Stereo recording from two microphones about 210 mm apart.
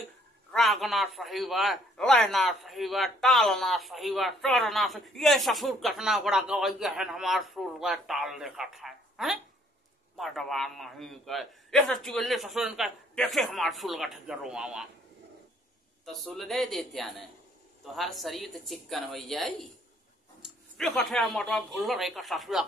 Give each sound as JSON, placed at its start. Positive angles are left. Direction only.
{"t": 0.5, "sound": "a man's voice", "side_deg": 0}
{"t": 16.1, "sound": "a man's voice", "side_deg": 0}